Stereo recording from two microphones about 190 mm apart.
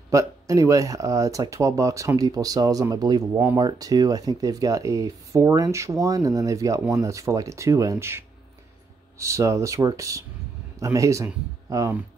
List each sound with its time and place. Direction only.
0.1 s speech: 15° right (ahead or behind)